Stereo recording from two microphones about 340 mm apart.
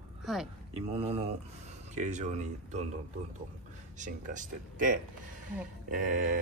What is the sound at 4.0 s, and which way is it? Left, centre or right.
Speech, right.